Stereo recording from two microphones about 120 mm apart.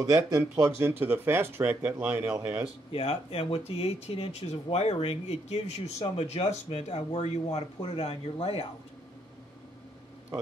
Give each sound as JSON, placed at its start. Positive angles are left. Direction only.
{"t": 0.0, "sound": "speech", "side_deg": -30}
{"t": 2.9, "sound": "speech", "side_deg": 50}